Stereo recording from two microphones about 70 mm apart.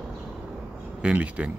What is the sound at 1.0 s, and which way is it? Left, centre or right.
Speech, centre.